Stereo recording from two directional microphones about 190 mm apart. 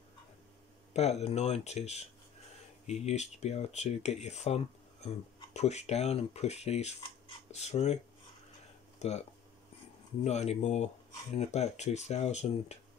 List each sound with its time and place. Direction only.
0.9 s speech: 35° left (ahead or behind)
9.0 s speech: 35° left (ahead or behind)
10.2 s speech: 35° left (ahead or behind)